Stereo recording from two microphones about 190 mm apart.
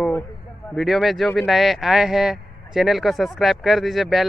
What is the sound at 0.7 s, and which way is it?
Speech, centre (ahead or behind).